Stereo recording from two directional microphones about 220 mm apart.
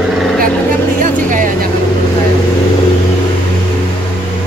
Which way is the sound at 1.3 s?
40° right (ahead or behind).